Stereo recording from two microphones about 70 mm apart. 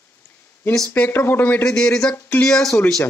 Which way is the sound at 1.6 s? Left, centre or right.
Centre.